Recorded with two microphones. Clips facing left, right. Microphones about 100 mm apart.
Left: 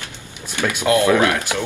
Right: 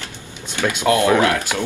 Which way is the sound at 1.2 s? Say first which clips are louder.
Even; 20° left (ahead or behind).